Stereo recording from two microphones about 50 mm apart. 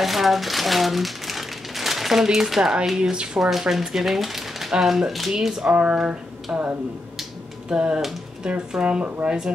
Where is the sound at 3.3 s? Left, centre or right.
Centre.